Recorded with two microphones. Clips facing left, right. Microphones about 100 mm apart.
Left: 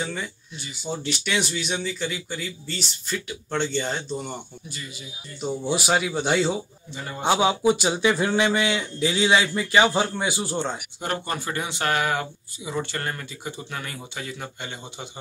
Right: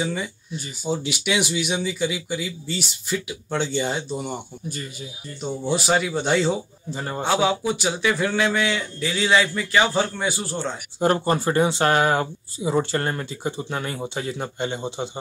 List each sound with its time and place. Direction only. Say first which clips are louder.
0.0 s speech: right 4 dB; 5° right (ahead or behind)
5.4 s speech: right 1 dB; 5° left (ahead or behind)
6.9 s a man's voice: right 7 dB; 40° right (ahead or behind)
7.2 s speech: left 2 dB; 20° left (ahead or behind)
11.0 s speech: right 11 dB; 30° right (ahead or behind)